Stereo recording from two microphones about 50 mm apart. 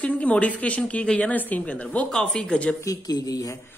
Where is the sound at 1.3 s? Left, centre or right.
Left.